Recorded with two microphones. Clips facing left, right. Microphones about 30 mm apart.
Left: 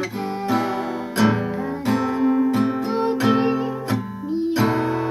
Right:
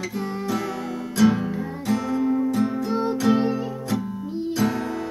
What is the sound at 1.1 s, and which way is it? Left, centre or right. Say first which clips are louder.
Music: even; left.